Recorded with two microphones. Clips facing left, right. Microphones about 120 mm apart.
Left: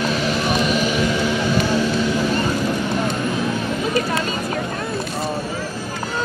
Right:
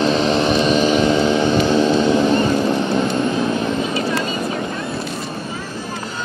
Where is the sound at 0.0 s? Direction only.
25° right (ahead or behind).